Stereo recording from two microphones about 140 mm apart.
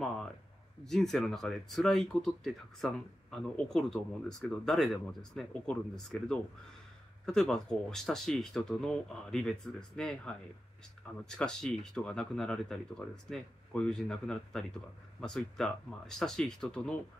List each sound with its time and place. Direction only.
0.8 s speech: 5° left (ahead or behind)